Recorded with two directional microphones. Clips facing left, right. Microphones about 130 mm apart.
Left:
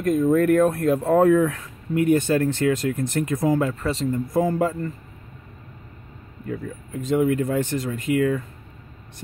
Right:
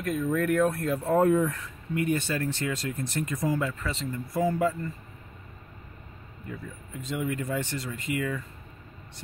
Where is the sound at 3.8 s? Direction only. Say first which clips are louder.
Left 9 dB; 35° left (ahead or behind).